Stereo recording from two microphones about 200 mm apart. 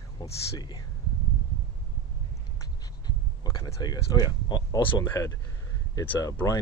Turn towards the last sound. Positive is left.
turn(degrees=15)  # may be behind; listen again after turning